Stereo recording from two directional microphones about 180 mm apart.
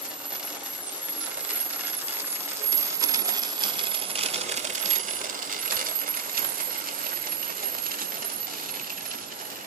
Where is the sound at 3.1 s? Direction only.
25° right (ahead or behind).